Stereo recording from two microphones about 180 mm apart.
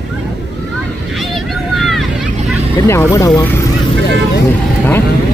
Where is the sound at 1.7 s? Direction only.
Centre (ahead or behind).